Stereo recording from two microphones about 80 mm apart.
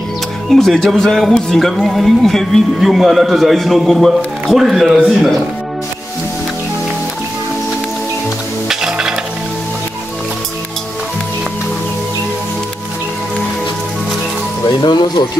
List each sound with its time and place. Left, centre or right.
0.5 s speech: centre
8.6 s music: centre
14.8 s speech: left